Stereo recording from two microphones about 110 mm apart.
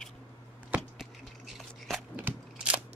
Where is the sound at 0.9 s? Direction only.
Centre (ahead or behind).